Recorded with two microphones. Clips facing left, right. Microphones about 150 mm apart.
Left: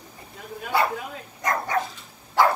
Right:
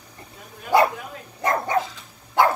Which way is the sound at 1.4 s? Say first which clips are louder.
Right 3 dB; 30° right (ahead or behind).